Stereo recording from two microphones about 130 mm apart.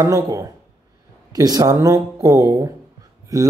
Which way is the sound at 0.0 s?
25° right (ahead or behind).